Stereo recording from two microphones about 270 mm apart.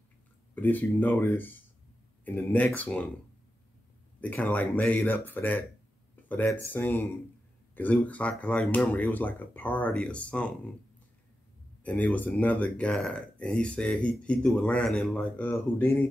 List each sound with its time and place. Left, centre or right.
0.6 s speech: centre
4.2 s speech: centre
11.8 s speech: centre